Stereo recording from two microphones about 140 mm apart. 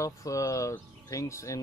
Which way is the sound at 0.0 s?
25° left (ahead or behind).